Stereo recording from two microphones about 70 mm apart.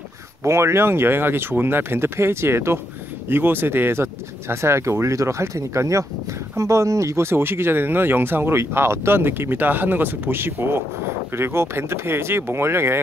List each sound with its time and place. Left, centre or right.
0.4 s speech: right